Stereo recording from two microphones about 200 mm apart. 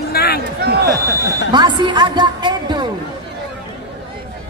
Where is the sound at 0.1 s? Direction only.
50° left (ahead or behind).